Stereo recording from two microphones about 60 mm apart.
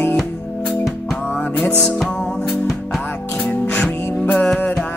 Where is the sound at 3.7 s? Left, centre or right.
Left.